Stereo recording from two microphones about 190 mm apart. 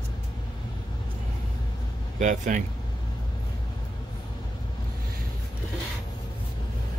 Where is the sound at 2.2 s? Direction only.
40° right (ahead or behind).